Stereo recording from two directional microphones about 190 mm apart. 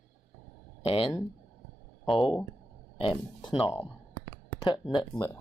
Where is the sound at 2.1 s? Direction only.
25° left (ahead or behind).